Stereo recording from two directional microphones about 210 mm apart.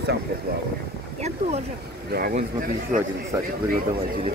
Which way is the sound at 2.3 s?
40° right (ahead or behind).